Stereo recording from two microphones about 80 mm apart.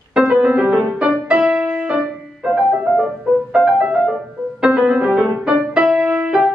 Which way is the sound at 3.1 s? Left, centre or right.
Right.